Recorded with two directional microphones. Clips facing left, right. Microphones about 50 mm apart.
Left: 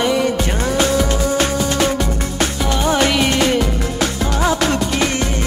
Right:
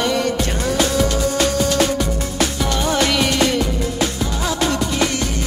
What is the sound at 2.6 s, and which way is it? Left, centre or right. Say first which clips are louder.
Music: left 5 dB; centre.